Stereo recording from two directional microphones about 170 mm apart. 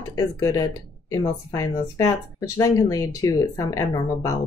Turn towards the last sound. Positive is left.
turn(degrees=20)  # may be behind; listen again after turning